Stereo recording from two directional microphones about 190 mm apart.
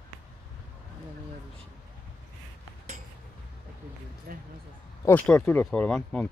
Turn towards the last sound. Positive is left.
turn(degrees=5)  # may be behind; listen again after turning